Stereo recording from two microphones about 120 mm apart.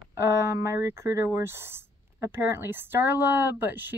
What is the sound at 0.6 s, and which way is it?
A woman's voice, 20° right (ahead or behind).